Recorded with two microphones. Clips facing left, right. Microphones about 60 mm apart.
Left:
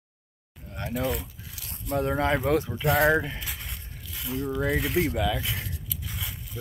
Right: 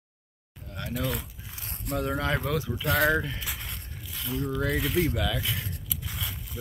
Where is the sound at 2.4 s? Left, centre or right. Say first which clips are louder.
Left 5 dB; left.